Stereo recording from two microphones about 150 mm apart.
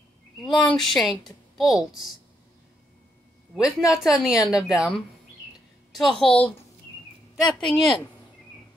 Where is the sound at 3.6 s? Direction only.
5° right (ahead or behind).